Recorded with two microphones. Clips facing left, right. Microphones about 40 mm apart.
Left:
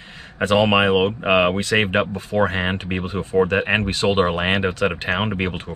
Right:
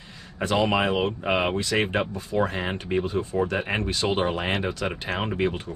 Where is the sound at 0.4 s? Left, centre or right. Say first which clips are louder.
Left 6 dB; left.